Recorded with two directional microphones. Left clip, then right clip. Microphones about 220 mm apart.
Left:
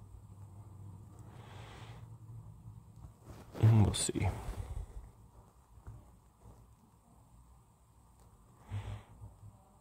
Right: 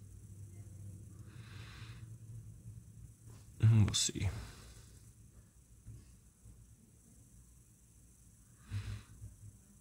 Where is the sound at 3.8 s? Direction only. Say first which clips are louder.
Right 2 dB; 10° left (ahead or behind).